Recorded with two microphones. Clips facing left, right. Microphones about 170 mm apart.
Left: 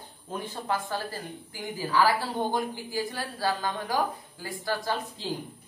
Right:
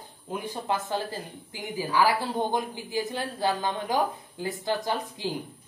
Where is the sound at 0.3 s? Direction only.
20° right (ahead or behind).